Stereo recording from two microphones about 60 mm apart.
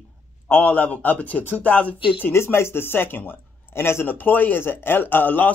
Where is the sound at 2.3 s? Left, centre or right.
Left.